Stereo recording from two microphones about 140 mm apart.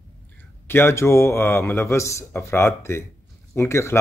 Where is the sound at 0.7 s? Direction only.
20° left (ahead or behind).